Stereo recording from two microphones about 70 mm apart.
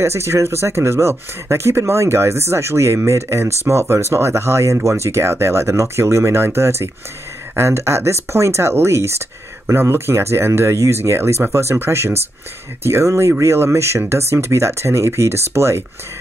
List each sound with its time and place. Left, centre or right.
0.0 s speech: right